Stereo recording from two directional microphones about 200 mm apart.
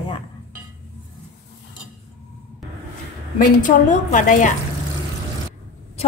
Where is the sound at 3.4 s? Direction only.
40° left (ahead or behind).